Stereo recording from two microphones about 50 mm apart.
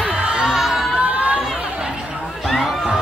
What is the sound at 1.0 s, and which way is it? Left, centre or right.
Chatter, right.